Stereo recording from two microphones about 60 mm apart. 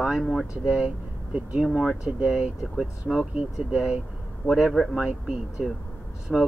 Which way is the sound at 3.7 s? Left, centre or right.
Centre.